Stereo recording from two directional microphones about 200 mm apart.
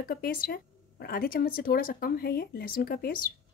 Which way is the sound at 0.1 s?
45° left (ahead or behind).